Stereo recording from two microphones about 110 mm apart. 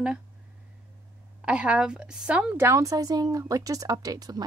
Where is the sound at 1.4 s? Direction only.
10° right (ahead or behind).